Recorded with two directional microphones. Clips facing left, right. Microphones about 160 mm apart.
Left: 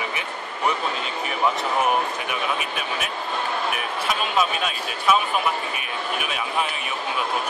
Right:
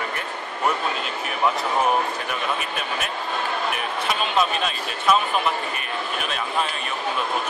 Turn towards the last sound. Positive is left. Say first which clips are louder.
# even
turn(degrees=10)  # may be behind; listen again after turning